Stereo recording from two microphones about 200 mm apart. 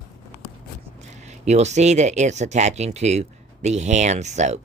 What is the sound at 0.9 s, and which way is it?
Speech, 35° right (ahead or behind).